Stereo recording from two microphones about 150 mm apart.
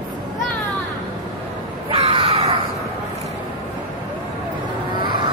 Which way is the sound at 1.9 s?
40° right (ahead or behind).